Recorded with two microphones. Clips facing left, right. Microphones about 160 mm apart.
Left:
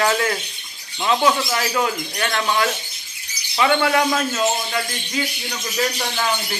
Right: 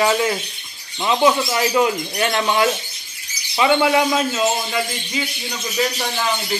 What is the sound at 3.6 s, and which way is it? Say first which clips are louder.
A man's voice: right 2 dB; 10° right (ahead or behind).